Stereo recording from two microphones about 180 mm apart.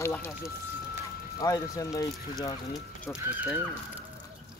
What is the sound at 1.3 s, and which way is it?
Speech, 20° left (ahead or behind).